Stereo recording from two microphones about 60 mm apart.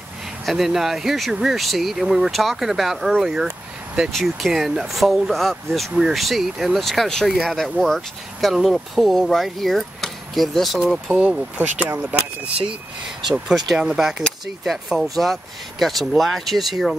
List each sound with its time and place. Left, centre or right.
0.5 s speech: centre
11.1 s speech: right
13.5 s speech: centre